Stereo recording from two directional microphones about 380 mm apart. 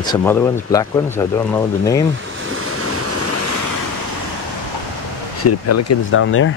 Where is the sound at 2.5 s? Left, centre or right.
Right.